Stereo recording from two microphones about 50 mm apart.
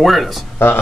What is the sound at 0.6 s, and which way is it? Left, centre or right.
Speech, left.